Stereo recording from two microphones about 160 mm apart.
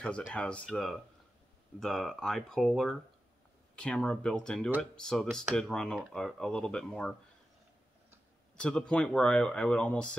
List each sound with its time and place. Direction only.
0.0 s speech: 5° left (ahead or behind)
8.5 s speech: 5° left (ahead or behind)